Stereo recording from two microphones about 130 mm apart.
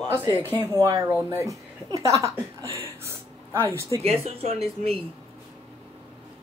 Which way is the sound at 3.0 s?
20° right (ahead or behind).